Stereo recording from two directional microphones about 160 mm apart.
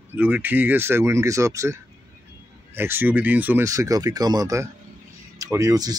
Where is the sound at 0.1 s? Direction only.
10° right (ahead or behind).